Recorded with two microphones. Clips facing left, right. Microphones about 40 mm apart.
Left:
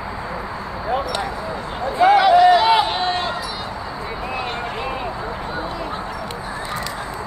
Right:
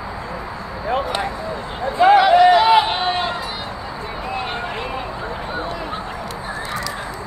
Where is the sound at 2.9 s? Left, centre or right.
Centre.